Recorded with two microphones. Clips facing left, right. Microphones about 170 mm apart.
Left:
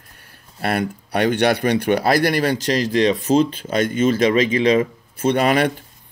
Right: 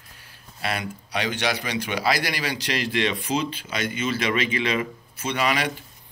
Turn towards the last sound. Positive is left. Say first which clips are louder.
# left 8 dB
turn(degrees=50)  # may be behind; listen again after turning